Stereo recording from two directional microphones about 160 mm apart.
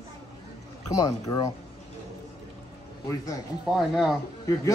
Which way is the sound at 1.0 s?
25° left (ahead or behind).